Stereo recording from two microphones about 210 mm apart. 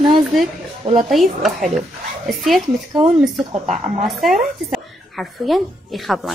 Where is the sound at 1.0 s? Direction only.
Centre (ahead or behind).